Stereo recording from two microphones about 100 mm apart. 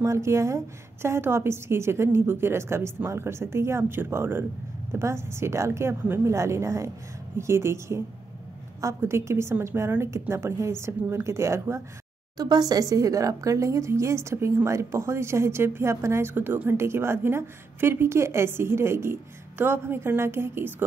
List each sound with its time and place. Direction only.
0.0 s speech: 30° right (ahead or behind)
12.4 s speech: 40° right (ahead or behind); by 20.7 s 25° right (ahead or behind)